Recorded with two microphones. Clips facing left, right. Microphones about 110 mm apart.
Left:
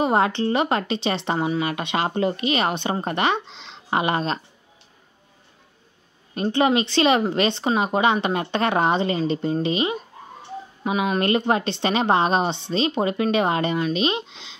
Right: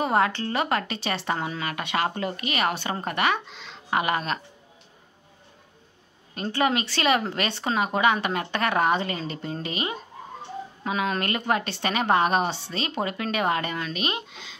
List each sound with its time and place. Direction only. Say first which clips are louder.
0.0 s speech: left 3 dB; 20° left (ahead or behind)
6.3 s speech: left 5 dB; 20° left (ahead or behind)